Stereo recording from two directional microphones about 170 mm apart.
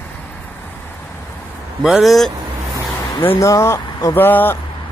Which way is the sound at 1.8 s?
Centre (ahead or behind).